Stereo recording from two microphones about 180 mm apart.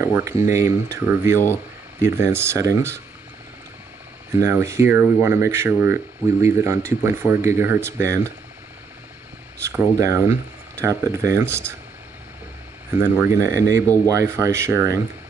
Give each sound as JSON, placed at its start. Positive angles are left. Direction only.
{"t": 0.0, "sound": "speech", "side_deg": -15}
{"t": 4.4, "sound": "speech", "side_deg": -15}
{"t": 9.7, "sound": "speech", "side_deg": -15}
{"t": 13.0, "sound": "speech", "side_deg": -15}